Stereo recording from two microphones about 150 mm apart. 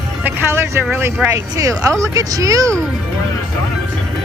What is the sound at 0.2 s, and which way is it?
Speech, 15° right (ahead or behind).